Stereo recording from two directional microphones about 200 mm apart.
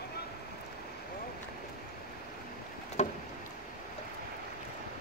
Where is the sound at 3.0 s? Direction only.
35° left (ahead or behind).